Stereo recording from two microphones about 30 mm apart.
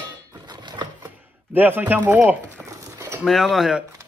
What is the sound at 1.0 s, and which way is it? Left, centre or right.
Chopping, right.